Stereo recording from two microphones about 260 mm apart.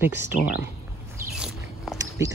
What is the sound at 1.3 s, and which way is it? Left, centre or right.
Biting, centre.